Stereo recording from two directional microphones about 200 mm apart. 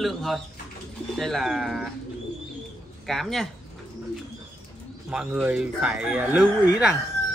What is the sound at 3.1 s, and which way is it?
Speech, centre (ahead or behind).